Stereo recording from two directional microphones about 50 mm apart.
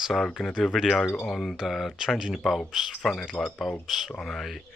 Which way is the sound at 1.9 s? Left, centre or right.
Centre.